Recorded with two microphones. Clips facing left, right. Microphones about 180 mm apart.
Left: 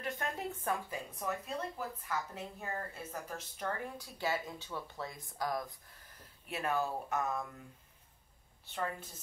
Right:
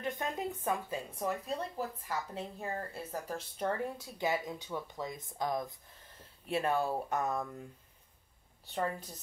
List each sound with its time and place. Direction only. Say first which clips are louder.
0.0 s a woman's voice: right 3 dB; 20° right (ahead or behind)
8.6 s a woman's voice: right 4 dB; 35° right (ahead or behind)